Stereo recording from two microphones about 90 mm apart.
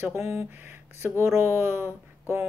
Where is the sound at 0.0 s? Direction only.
30° right (ahead or behind).